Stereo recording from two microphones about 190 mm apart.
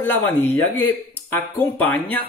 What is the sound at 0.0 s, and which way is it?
Speech, 10° left (ahead or behind).